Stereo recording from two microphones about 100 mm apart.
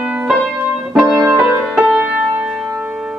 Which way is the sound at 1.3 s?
10° right (ahead or behind).